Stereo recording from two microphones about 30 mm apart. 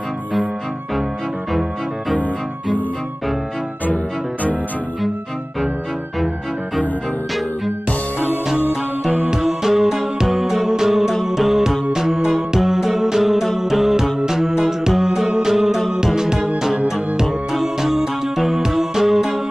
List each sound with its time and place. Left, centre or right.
9.3 s music: centre